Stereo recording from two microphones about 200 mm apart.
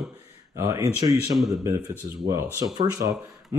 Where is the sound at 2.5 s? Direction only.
20° right (ahead or behind).